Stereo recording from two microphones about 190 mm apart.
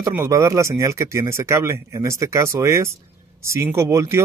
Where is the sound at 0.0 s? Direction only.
15° right (ahead or behind).